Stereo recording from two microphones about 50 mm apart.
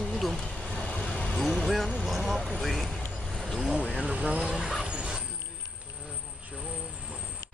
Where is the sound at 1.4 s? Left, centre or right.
Centre.